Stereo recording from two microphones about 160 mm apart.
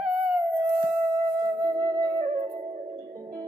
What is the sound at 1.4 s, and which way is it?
Music, 20° right (ahead or behind).